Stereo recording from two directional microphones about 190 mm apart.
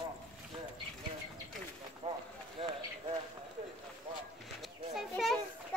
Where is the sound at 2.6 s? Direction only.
30° right (ahead or behind).